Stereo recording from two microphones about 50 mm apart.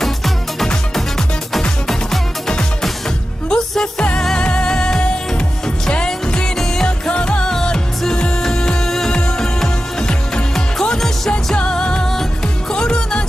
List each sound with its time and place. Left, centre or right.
0.0 s music: centre